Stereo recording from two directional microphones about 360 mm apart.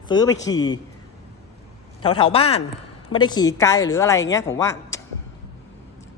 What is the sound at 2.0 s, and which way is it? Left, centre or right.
A man's voice, centre.